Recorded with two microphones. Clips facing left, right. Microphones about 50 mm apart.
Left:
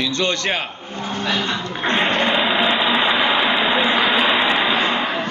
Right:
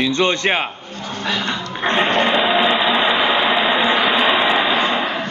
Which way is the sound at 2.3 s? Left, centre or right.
Centre.